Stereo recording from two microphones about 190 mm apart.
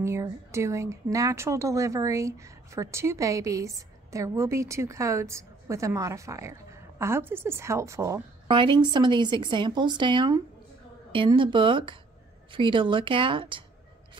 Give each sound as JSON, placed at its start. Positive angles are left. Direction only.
{"t": 0.0, "sound": "a woman's voice", "side_deg": -15}